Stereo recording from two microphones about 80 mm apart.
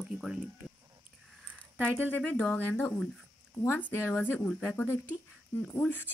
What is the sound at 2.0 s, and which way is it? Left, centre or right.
Speech, left.